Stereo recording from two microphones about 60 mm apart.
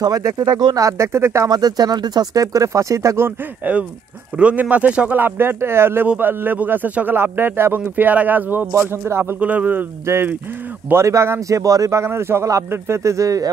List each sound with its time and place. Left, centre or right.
0.0 s speech: right
0.9 s speech: right
1.6 s speech: right
3.6 s speech: right
5.1 s speech: right
8.9 s speech: right
9.4 s speech: right
10.0 s speech: right